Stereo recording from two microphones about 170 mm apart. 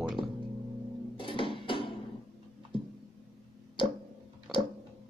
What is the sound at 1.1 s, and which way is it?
Music, 30° left (ahead or behind).